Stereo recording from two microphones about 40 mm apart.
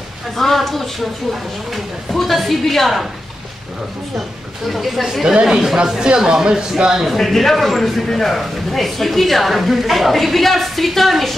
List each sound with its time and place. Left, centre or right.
0.4 s speech: centre
4.6 s speech: centre
5.2 s speech: centre
7.1 s speech: centre